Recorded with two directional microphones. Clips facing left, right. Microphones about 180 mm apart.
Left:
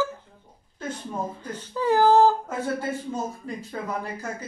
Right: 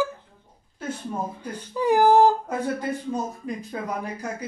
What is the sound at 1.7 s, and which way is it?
Speech, 15° right (ahead or behind).